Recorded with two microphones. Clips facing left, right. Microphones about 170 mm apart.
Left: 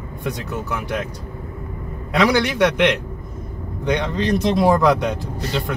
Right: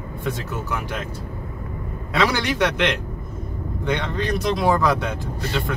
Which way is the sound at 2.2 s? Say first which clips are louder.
Left 4 dB; 15° left (ahead or behind).